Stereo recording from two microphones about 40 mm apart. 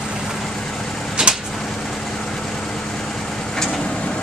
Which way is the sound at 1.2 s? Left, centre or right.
Centre.